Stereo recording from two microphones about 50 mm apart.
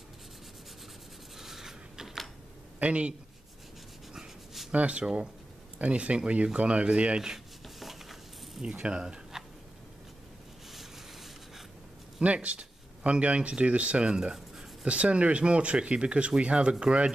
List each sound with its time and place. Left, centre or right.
1.3 s scissors: centre
2.8 s speech: right
4.7 s speech: right
7.6 s stir: centre
8.6 s speech: right
12.2 s speech: right; by 14.9 s centre
14.9 s speech: right